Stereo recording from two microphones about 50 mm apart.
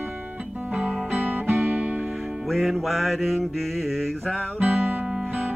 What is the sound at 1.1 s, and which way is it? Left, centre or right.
Music, right.